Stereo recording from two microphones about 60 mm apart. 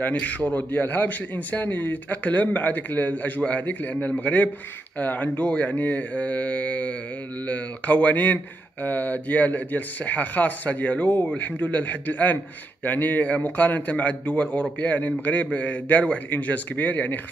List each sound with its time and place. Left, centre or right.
0.0 s a man's voice: left